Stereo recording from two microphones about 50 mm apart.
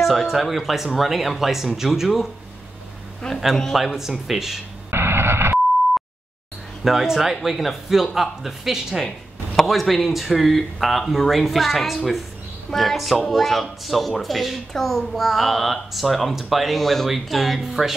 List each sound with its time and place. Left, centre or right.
0.3 s speech: centre
3.2 s a man's voice: centre
3.7 s speech: centre
4.9 s radio: right
6.8 s speech: centre